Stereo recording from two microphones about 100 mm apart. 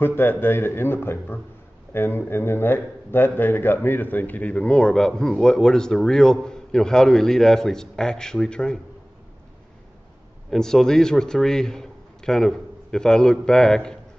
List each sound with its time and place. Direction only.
0.0 s a man's voice: 20° left (ahead or behind)
10.5 s a man's voice: 5° left (ahead or behind)